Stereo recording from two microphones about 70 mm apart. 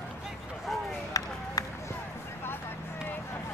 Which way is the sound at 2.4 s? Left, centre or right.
Left.